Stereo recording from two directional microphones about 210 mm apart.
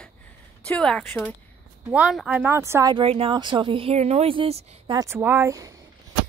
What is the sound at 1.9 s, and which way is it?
Speech, 5° right (ahead or behind).